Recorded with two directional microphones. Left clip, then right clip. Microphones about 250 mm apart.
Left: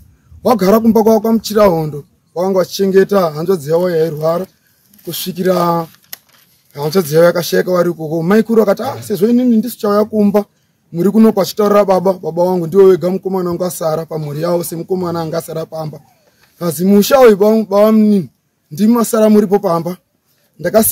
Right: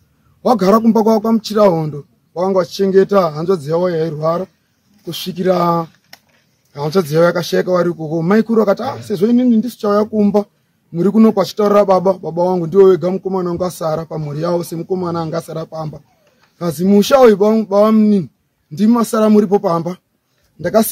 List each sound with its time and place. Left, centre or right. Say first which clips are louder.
0.4 s speech: left 1 dB; centre
6.1 s a sound: left 6 dB; left
6.7 s speech: left 2 dB; centre